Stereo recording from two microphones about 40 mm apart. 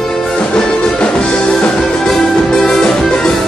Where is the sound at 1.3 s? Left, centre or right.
Centre.